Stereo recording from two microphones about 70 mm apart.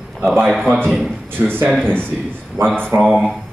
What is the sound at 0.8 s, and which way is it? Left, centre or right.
Speech, centre.